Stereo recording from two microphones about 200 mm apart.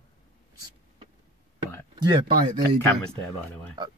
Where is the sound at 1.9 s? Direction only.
20° right (ahead or behind).